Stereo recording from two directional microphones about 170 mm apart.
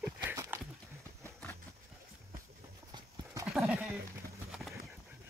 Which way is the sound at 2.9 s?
25° right (ahead or behind).